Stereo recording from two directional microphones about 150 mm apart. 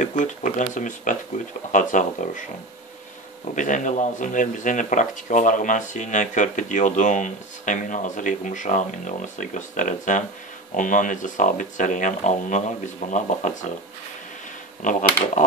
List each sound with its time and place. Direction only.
0.0 s speech: 55° left (ahead or behind)
3.5 s speech: 55° left (ahead or behind)
14.8 s speech: 60° left (ahead or behind)